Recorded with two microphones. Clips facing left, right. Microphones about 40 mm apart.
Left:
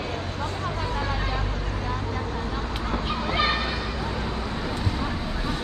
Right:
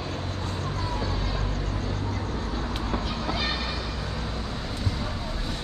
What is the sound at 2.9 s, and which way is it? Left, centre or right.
Children playing, left.